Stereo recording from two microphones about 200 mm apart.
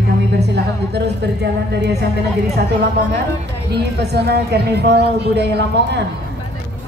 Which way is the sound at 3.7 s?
55° right (ahead or behind).